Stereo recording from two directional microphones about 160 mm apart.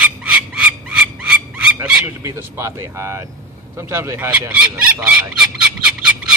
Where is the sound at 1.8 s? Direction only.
15° right (ahead or behind).